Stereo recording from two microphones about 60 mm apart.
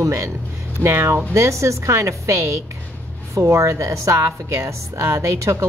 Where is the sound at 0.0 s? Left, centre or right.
Right.